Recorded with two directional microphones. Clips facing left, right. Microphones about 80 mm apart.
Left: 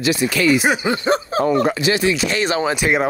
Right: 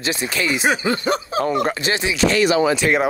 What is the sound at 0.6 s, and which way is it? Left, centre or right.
Speech, centre.